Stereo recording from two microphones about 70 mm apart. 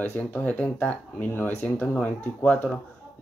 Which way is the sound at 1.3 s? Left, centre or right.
Left.